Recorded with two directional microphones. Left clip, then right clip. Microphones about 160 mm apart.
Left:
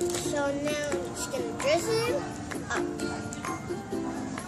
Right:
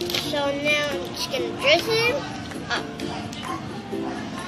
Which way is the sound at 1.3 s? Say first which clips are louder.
Right 7 dB; 15° left (ahead or behind).